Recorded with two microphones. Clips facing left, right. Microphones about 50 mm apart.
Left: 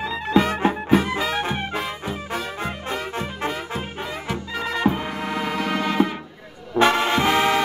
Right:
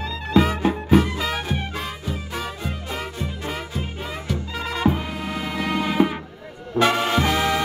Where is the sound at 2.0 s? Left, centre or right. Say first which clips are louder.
Left 2 dB; left.